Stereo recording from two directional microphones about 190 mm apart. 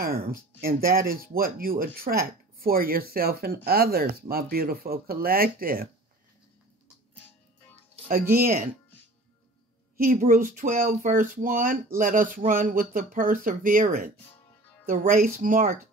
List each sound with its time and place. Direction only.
0.0 s speech: 55° right (ahead or behind)
8.1 s speech: 50° right (ahead or behind)
9.9 s speech: 50° right (ahead or behind)